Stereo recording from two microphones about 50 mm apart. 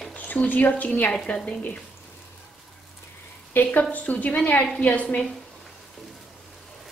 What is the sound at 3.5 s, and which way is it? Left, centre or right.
A woman's voice, left.